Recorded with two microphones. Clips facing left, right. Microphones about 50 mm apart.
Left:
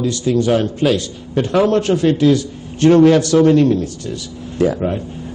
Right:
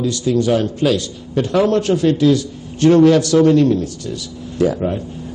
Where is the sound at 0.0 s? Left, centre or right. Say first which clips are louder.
Even; left.